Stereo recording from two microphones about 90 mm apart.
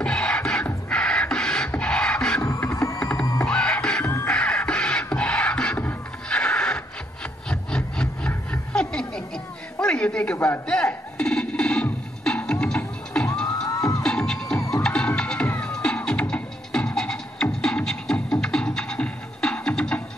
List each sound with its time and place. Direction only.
0.0 s music: 10° left (ahead or behind)
2.4 s music: 30° left (ahead or behind)
3.4 s music: 10° left (ahead or behind)
4.0 s music: 25° left (ahead or behind)
4.3 s music: 10° left (ahead or behind)
7.4 s rub: 10° left (ahead or behind)
8.3 s a sound: 15° left (ahead or behind)
10.7 s music: 10° left (ahead or behind)
13.7 s music: 35° left (ahead or behind)
14.0 s music: 10° left (ahead or behind)